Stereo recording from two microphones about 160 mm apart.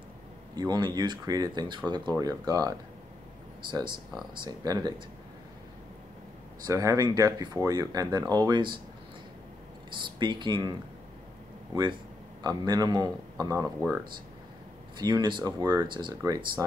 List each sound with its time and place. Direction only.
0.6 s speech: 25° right (ahead or behind)
6.6 s speech: 20° right (ahead or behind)
9.8 s speech: 30° right (ahead or behind)
12.4 s speech: 25° right (ahead or behind)
15.0 s speech: 25° right (ahead or behind)